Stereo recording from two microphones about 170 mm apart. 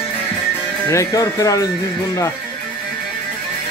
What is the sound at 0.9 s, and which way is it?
Speech, 20° left (ahead or behind).